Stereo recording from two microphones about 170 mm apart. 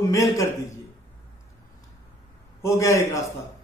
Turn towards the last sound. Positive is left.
turn(degrees=20)  # may be behind; listen again after turning